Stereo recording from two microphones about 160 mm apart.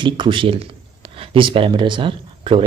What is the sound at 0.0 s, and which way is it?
A man's voice, 30° right (ahead or behind).